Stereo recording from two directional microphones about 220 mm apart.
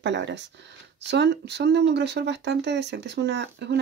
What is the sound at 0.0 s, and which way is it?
Speech, 55° right (ahead or behind).